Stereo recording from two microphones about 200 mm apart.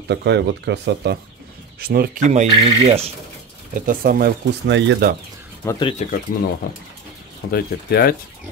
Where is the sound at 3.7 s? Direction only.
45° right (ahead or behind); by 5.1 s 60° right (ahead or behind).